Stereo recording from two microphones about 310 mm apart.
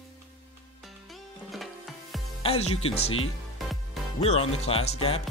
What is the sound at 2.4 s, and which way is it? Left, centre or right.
Speech, centre.